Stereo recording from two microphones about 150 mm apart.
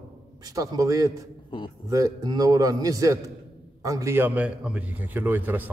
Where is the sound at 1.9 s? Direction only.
25° right (ahead or behind).